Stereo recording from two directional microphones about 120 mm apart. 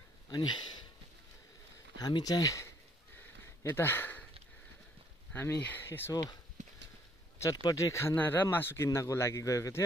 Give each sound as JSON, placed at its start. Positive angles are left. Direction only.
{"t": 0.3, "sound": "speech", "side_deg": 35}
{"t": 2.0, "sound": "speech", "side_deg": 35}
{"t": 5.3, "sound": "speech", "side_deg": 15}
{"t": 6.6, "sound": "horse", "side_deg": -90}
{"t": 7.4, "sound": "speech", "side_deg": 25}